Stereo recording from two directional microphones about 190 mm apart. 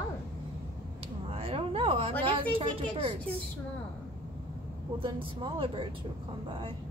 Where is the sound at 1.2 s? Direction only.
30° right (ahead or behind).